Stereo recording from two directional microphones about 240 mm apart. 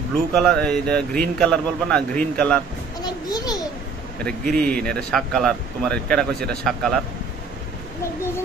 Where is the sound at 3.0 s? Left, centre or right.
Centre.